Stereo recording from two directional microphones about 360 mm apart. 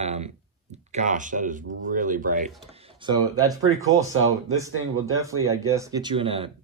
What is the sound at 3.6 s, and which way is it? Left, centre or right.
Speech, right.